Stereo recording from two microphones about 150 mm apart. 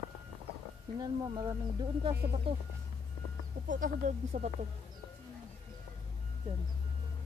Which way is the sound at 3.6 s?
60° right (ahead or behind).